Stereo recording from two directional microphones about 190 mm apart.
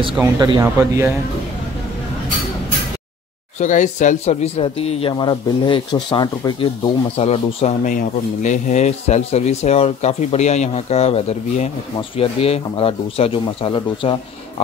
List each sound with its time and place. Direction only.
0.2 s speech: 15° right (ahead or behind)
3.5 s speech: 40° left (ahead or behind)